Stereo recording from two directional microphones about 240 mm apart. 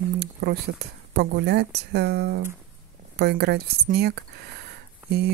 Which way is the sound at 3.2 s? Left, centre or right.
Right.